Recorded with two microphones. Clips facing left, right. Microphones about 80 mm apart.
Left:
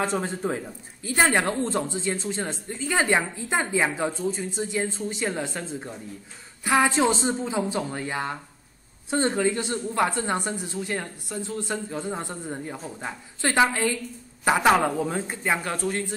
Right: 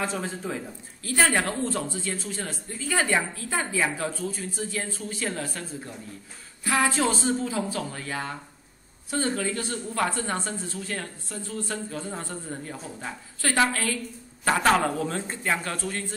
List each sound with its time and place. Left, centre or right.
0.0 s speech: left
1.0 s speech: centre